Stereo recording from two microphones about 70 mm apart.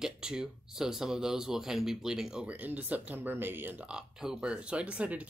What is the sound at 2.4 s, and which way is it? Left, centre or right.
Speech, right.